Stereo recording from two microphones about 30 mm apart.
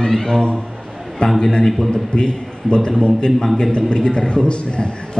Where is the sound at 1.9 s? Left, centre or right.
Left.